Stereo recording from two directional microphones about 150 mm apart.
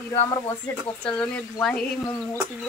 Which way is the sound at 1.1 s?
5° left (ahead or behind).